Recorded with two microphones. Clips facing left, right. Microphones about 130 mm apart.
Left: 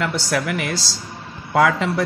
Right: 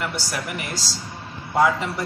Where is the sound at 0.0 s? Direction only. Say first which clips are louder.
Left 6 dB; 90° left.